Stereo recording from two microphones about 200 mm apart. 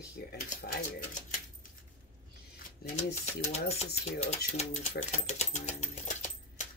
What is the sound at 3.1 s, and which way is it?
Speech, 35° left (ahead or behind).